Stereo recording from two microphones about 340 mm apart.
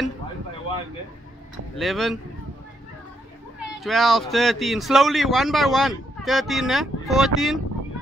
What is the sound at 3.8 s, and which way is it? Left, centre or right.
Speech, centre.